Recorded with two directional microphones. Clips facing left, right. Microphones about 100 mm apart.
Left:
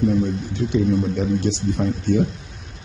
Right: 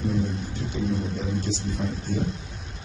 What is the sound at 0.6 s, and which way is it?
A man's voice, 75° left (ahead or behind).